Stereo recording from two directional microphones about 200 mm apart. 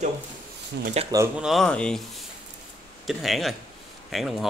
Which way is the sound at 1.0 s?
30° right (ahead or behind).